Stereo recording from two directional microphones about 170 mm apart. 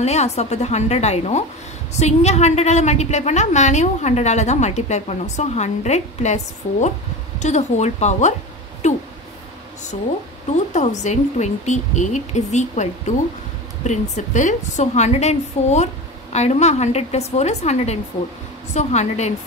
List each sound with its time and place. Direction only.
0.0 s a woman's voice: 40° left (ahead or behind)
8.8 s a sound: 40° left (ahead or behind)
10.7 s speech: 45° left (ahead or behind)
13.8 s a woman's voice: 45° left (ahead or behind)